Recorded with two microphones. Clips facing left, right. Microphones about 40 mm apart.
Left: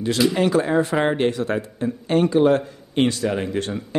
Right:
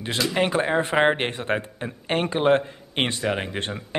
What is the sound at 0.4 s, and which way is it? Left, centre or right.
Speech, right.